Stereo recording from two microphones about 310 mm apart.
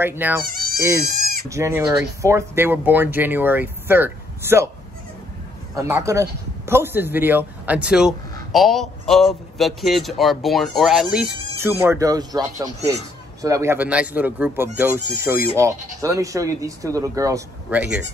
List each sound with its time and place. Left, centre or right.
0.0 s speech: centre
0.4 s insect: right
1.0 s goat: right
1.5 s speech: centre
5.8 s a man's voice: centre